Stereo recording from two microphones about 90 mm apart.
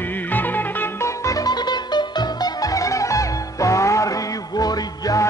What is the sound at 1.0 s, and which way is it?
Music, 40° left (ahead or behind).